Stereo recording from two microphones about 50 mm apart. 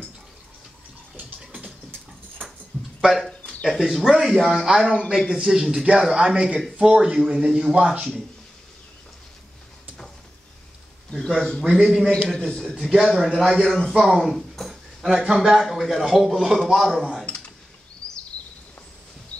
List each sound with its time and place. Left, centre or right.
1.1 s bathtub: right
3.0 s a man's voice: centre
6.3 s a man's voice: right
11.1 s a man's voice: centre
12.4 s a man's voice: centre
12.7 s speech: centre
15.0 s a man's voice: centre